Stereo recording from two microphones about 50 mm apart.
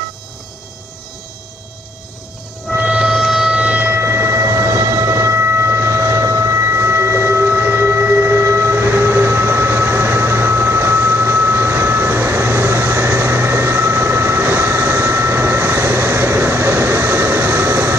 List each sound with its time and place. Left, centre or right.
2.8 s music: centre
3.5 s civil defense siren: right
4.0 s train: right
14.8 s vehicle: right